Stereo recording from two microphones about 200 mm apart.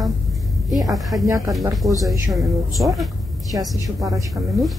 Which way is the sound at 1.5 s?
15° right (ahead or behind).